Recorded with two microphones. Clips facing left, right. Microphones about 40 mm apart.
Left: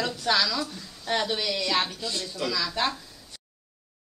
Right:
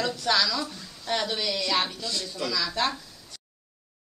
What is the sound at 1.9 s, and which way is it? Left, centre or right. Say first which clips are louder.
Speech: even; centre.